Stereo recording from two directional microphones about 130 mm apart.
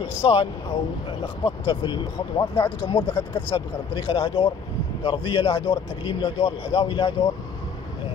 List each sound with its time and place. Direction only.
0.0 s a man's voice: 45° left (ahead or behind)